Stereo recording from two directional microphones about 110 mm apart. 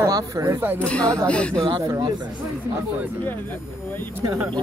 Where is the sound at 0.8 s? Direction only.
10° left (ahead or behind).